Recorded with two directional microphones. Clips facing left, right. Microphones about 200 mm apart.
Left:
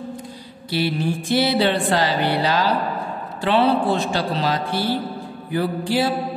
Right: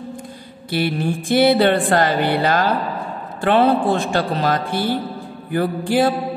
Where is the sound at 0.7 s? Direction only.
55° right (ahead or behind).